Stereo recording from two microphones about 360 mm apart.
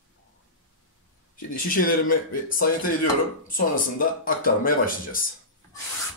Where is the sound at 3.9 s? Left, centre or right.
Left.